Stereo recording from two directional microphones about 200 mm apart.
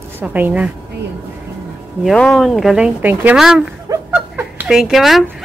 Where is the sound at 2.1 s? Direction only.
Centre (ahead or behind).